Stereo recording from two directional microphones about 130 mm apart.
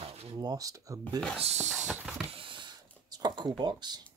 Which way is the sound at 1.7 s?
10° right (ahead or behind).